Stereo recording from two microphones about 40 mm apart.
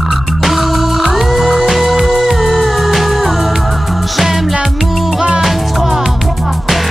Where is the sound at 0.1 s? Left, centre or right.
Centre.